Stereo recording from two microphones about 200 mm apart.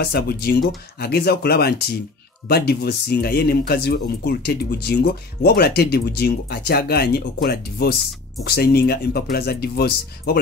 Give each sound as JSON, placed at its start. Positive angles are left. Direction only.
{"t": 0.0, "sound": "speech", "side_deg": 50}